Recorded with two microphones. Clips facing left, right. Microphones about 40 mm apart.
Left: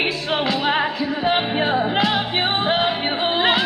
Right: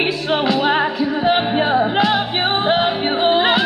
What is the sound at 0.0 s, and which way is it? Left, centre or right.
Music, centre.